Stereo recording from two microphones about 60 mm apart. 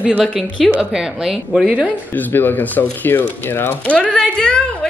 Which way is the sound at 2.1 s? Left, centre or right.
Left.